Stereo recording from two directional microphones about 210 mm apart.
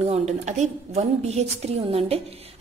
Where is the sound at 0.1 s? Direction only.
30° right (ahead or behind).